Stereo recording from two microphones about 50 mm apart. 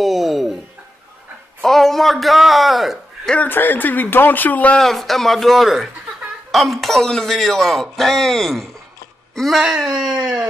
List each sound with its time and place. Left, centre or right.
0.0 s a sound: centre
1.6 s a man's voice: centre
3.3 s speech: left
4.7 s a man's voice: centre
9.5 s speech: centre
9.9 s a sound: right